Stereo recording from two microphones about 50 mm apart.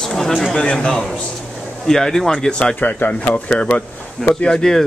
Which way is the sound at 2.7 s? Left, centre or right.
Left.